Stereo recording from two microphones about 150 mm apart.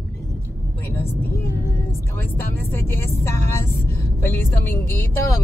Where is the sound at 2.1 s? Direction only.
15° left (ahead or behind).